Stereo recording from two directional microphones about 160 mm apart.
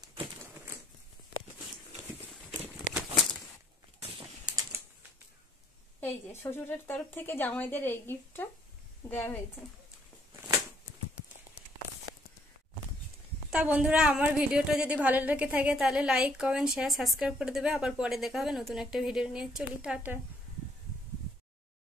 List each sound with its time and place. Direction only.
2.9 s a sound: 50° left (ahead or behind)
4.5 s typing: 20° right (ahead or behind)
5.9 s a woman's voice: 15° left (ahead or behind)
13.5 s a woman's voice: 10° right (ahead or behind)